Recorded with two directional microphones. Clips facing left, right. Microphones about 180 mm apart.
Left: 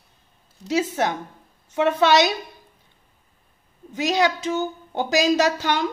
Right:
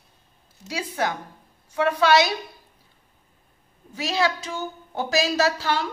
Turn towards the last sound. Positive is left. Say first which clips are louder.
# left 2 dB
turn(degrees=20)  # may be behind; listen again after turning